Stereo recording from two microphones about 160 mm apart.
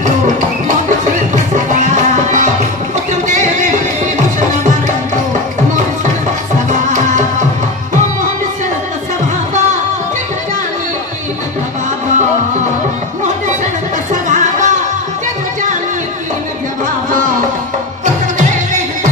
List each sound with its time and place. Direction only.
0.7 s music: 50° right (ahead or behind)
3.1 s a sound: 50° right (ahead or behind)
6.9 s music: 50° right (ahead or behind)
14.3 s music: 50° right (ahead or behind)